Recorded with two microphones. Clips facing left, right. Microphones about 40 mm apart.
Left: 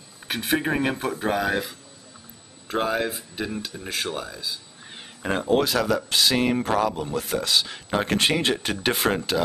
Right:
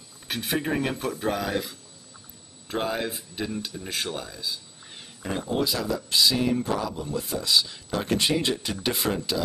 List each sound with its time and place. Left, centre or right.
0.3 s speech: left
2.7 s speech: centre
4.9 s a sound: left
5.6 s speech: left
7.2 s speech: left